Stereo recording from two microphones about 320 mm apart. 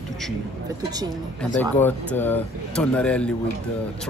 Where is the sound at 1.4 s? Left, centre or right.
Centre.